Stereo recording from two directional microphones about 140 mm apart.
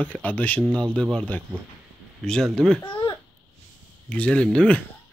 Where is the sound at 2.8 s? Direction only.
35° left (ahead or behind).